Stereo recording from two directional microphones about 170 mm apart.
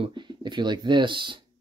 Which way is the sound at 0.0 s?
25° right (ahead or behind).